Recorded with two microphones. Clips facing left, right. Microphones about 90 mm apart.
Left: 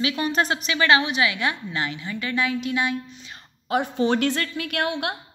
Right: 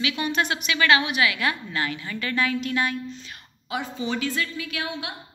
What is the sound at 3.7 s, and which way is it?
A woman's voice, 60° left (ahead or behind).